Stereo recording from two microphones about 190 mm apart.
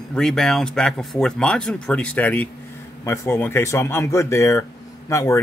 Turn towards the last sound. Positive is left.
turn(degrees=15)  # may be behind; listen again after turning